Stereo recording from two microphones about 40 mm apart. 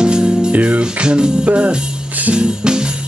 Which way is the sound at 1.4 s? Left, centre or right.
Right.